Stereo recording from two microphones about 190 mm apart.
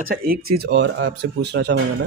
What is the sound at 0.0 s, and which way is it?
Speech, 50° right (ahead or behind).